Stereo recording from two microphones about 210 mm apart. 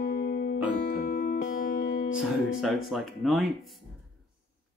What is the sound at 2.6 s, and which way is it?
Speech, centre (ahead or behind).